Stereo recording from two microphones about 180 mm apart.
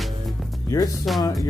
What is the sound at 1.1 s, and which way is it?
Speech, centre (ahead or behind).